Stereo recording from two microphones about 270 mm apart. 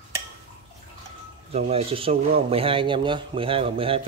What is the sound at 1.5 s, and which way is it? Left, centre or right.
Speech, right.